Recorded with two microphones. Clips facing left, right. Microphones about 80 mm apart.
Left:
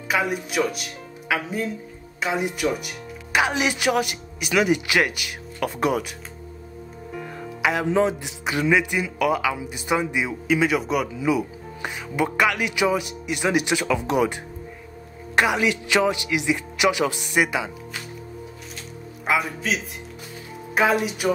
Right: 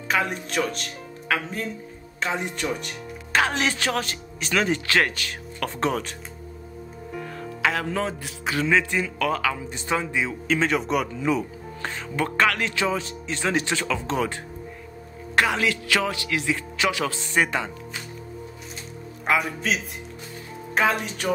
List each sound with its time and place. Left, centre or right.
0.1 s speech: centre
7.3 s speech: centre
15.3 s speech: centre
19.2 s speech: centre